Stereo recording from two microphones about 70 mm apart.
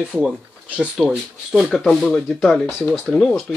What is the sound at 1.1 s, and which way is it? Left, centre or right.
Speech, centre.